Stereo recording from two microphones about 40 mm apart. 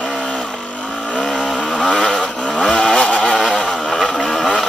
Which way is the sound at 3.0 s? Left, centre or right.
Left.